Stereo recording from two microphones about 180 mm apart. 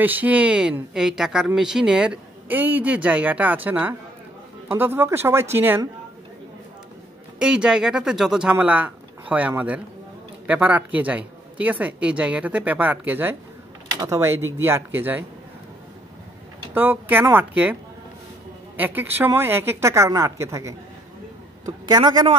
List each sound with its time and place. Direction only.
0.0 s speech: 10° right (ahead or behind)
7.3 s speech: 5° right (ahead or behind)
16.7 s speech: 10° right (ahead or behind)
18.8 s a man's voice: 10° right (ahead or behind)